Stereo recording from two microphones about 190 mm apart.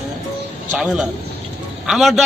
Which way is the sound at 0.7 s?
5° right (ahead or behind).